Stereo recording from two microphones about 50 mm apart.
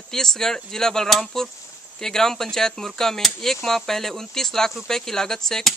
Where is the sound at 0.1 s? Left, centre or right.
Centre.